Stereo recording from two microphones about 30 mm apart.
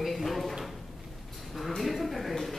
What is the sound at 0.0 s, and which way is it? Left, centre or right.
Drawer open or close, centre.